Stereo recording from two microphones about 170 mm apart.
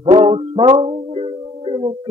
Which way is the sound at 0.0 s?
35° right (ahead or behind).